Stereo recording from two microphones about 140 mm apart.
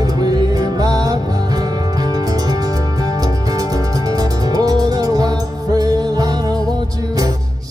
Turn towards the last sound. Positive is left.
turn(degrees=-25)  # may be behind; listen again after turning